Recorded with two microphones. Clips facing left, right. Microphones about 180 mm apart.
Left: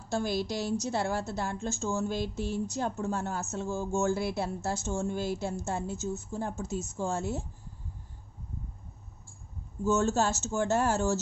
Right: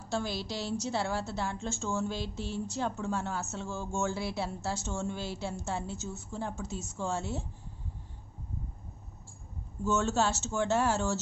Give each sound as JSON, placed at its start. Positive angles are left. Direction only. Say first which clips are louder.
{"t": 0.1, "sound": "a woman's voice", "louder": "left 4 dB", "side_deg": 50}
{"t": 9.9, "sound": "a woman's voice", "louder": "left 1 dB", "side_deg": 45}